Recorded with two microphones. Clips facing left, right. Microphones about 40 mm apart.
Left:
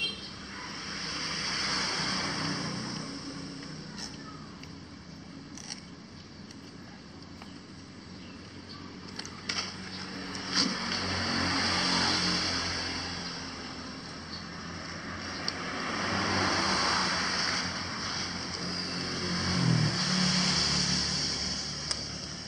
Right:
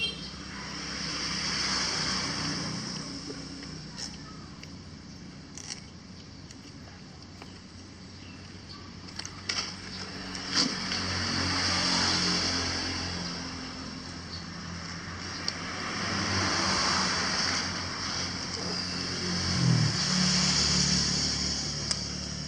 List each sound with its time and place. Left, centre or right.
0.0 s vehicle: centre
9.1 s vehicle: centre